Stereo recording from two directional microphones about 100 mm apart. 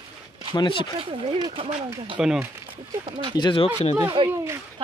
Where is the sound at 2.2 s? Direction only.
5° right (ahead or behind).